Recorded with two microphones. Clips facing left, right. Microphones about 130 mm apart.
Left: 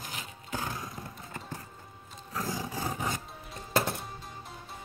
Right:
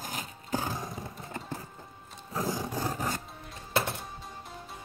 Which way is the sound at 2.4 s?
Centre (ahead or behind).